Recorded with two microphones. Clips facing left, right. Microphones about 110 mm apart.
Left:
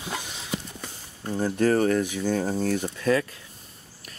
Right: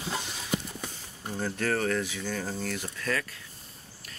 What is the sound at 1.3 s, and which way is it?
Speech, 20° left (ahead or behind).